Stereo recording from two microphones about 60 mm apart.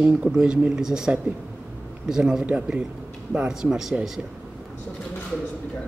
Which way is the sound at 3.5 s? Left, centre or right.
Centre.